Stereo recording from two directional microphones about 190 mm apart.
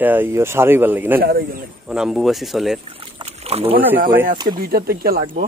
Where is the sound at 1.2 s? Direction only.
55° right (ahead or behind).